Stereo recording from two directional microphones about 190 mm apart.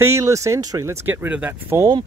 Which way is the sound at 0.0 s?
15° right (ahead or behind).